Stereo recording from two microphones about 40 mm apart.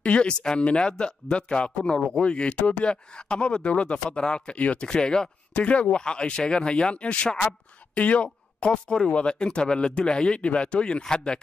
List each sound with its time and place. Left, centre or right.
0.0 s speech: left
5.5 s a woman's voice: left